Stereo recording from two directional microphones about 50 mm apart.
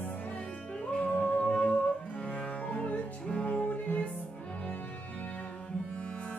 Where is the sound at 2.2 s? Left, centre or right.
Left.